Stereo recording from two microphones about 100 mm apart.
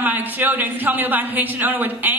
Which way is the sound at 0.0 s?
20° right (ahead or behind).